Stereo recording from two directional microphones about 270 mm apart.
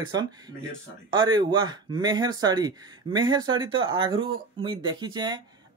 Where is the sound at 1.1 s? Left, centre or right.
Centre.